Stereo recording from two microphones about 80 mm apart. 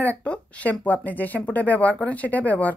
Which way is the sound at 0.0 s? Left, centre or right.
Centre.